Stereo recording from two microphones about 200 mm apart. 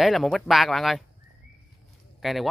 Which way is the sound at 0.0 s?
Centre (ahead or behind).